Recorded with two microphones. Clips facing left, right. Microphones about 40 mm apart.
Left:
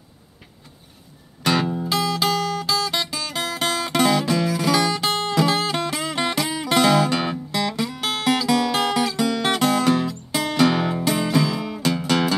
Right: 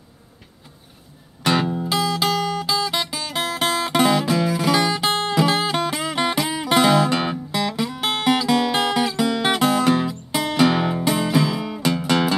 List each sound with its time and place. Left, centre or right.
1.4 s music: centre